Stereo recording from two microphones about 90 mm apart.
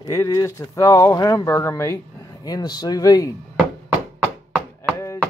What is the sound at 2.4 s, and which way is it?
Speech, 45° left (ahead or behind).